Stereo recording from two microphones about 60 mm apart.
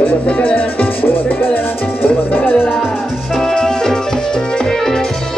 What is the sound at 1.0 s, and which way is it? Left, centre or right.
Music, left.